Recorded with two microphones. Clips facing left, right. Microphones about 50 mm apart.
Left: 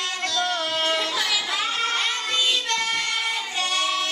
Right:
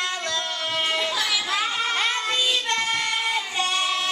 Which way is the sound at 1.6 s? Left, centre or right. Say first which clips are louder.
Right 1 dB; centre.